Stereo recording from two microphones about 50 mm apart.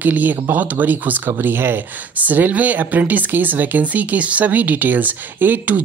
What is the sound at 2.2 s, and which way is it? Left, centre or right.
Speech, right.